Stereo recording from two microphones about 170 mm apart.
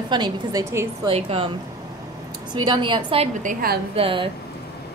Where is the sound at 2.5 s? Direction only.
30° right (ahead or behind).